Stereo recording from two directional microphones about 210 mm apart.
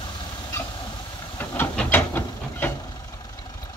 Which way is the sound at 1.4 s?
10° left (ahead or behind).